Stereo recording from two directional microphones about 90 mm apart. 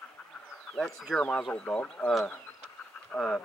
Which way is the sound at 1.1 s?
10° left (ahead or behind).